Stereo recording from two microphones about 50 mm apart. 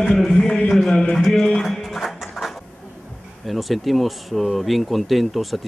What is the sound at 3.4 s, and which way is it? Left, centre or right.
Speech, centre.